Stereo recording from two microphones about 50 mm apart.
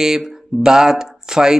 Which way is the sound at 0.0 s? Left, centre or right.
Centre.